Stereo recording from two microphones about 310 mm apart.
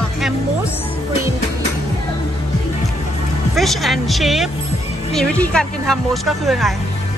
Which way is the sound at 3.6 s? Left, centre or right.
Centre.